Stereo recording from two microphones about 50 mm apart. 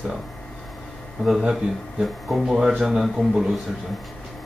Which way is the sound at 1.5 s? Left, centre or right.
Centre.